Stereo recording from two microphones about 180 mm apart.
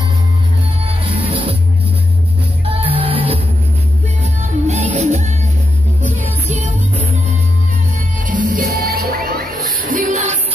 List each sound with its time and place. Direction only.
0.8 s music: 30° right (ahead or behind)
2.6 s music: 30° right (ahead or behind)
6.5 s music: 40° right (ahead or behind)
8.3 s music: 50° right (ahead or behind)